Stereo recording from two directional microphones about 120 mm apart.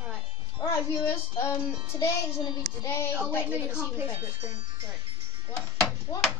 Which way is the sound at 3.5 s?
15° right (ahead or behind).